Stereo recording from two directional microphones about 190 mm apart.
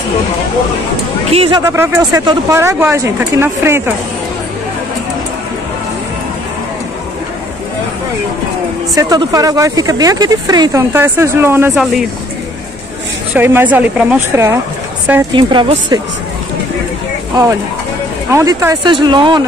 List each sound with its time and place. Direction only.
1.3 s speech: 30° right (ahead or behind)
1.6 s speech: 15° right (ahead or behind)
8.9 s speech: 20° right (ahead or behind)
11.7 s speech: centre (ahead or behind)
13.4 s speech: 10° right (ahead or behind)
17.3 s speech: 20° right (ahead or behind)